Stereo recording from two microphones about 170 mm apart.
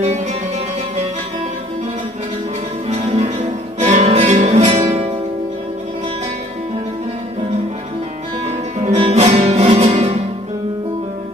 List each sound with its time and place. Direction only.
2.9 s music: 40° right (ahead or behind)
8.7 s music: 35° right (ahead or behind)